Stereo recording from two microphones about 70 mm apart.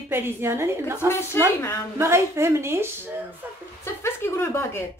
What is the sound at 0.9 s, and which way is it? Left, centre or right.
Speech, left.